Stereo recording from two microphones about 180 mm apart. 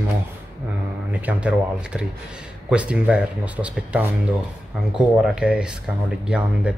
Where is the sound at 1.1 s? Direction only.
5° right (ahead or behind).